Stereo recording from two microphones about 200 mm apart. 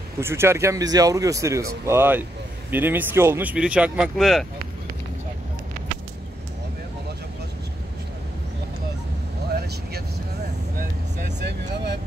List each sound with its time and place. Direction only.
0.2 s speech: 10° right (ahead or behind)
9.6 s vehicle: 55° right (ahead or behind)